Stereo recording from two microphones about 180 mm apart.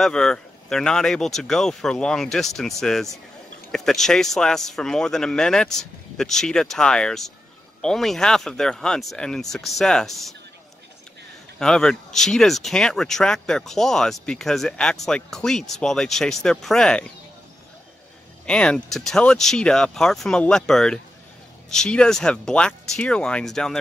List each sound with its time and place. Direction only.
0.0 s speech: 5° left (ahead or behind)
11.6 s speech: 5° left (ahead or behind)
18.4 s speech: 5° left (ahead or behind)